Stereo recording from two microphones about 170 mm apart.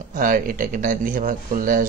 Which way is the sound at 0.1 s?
50° right (ahead or behind).